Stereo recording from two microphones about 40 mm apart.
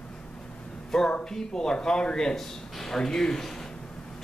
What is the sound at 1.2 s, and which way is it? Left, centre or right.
A man's voice, centre.